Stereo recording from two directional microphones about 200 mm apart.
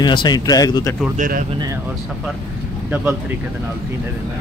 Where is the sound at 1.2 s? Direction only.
40° right (ahead or behind).